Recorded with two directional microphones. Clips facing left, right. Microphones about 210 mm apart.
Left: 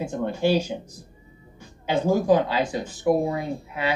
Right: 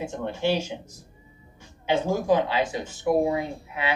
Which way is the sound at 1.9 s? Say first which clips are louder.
Left 3 dB; 40° left (ahead or behind).